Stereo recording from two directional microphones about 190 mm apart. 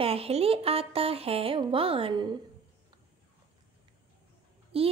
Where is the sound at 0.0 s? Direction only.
30° right (ahead or behind).